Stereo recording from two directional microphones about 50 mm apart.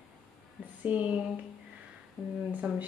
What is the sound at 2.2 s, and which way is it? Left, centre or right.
Speech, centre.